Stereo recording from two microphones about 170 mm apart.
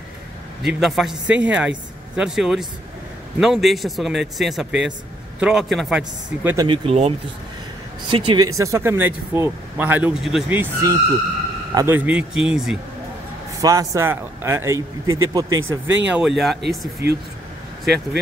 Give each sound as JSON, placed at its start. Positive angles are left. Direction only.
{"t": 0.7, "sound": "a man's voice", "side_deg": 0}
{"t": 6.5, "sound": "speech", "side_deg": -25}
{"t": 6.9, "sound": "speech", "side_deg": -35}
{"t": 8.5, "sound": "speech", "side_deg": -15}
{"t": 13.6, "sound": "speech", "side_deg": -20}
{"t": 16.1, "sound": "a man's voice", "side_deg": -5}